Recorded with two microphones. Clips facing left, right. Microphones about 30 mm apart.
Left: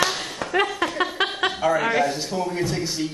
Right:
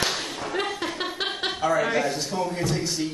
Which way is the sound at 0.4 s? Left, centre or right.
Left.